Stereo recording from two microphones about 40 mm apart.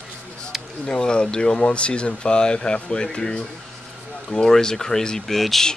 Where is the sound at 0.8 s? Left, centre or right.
Centre.